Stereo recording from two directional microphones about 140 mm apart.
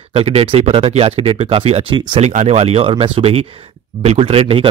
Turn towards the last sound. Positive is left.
turn(degrees=-40)  # may be behind; listen again after turning